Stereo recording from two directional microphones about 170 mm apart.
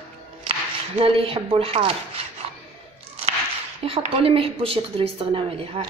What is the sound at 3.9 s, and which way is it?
A woman's voice, 30° right (ahead or behind).